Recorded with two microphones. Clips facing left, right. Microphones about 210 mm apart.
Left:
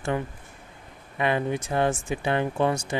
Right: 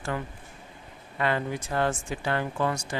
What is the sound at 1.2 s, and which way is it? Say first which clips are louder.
Speech: left 3 dB; 15° left (ahead or behind).